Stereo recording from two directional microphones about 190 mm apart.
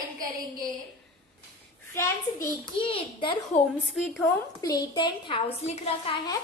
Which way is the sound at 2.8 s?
25° left (ahead or behind).